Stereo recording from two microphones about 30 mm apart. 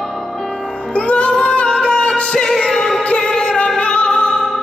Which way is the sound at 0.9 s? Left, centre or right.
Left.